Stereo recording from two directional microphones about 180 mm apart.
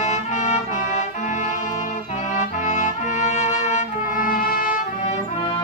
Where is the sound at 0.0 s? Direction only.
40° left (ahead or behind).